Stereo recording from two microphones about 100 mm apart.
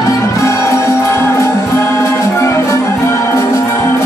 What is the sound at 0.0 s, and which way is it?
Music, 30° left (ahead or behind).